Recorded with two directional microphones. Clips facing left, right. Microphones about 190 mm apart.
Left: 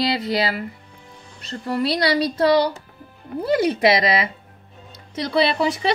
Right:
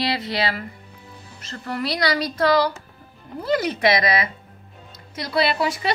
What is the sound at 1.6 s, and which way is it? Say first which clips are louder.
Speech: left 3 dB; 30° left (ahead or behind).